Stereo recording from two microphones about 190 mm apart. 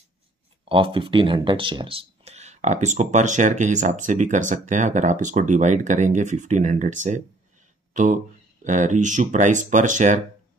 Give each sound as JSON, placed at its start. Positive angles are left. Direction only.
{"t": 0.7, "sound": "speech", "side_deg": -30}